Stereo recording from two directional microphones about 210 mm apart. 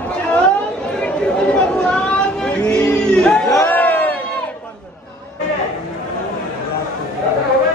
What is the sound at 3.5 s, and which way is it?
Crowd, 10° left (ahead or behind).